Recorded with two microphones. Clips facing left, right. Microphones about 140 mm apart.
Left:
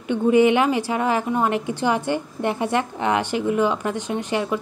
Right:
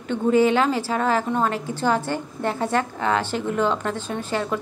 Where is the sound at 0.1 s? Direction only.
15° left (ahead or behind).